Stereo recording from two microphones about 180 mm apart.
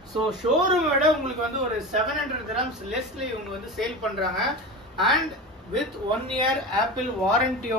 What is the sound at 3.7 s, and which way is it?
A man's voice, centre (ahead or behind).